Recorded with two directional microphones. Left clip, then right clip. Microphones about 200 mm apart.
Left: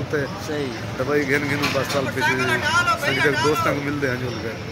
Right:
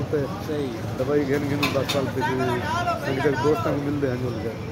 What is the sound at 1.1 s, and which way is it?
Speech, 5° right (ahead or behind).